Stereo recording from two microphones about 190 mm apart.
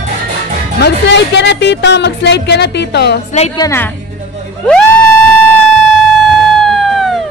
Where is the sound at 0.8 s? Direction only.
65° left (ahead or behind).